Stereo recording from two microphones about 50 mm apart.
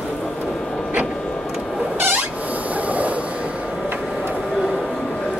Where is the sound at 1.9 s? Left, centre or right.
Right.